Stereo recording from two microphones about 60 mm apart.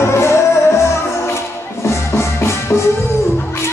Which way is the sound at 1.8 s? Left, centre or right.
Left.